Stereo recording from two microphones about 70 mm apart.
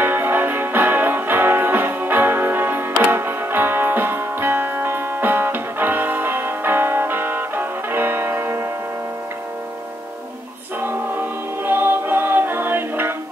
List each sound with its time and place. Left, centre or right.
0.0 s music: right
10.8 s music: right